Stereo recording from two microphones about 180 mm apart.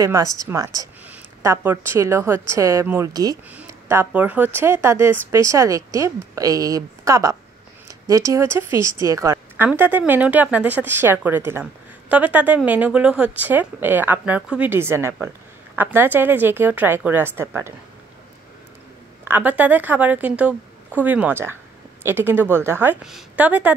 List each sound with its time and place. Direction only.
0.0 s a woman's voice: 20° right (ahead or behind)
3.5 s a woman's voice: 10° right (ahead or behind)
19.2 s speech: 10° right (ahead or behind)